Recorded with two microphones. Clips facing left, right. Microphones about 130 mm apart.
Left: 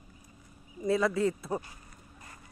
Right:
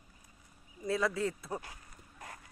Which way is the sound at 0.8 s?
Centre (ahead or behind).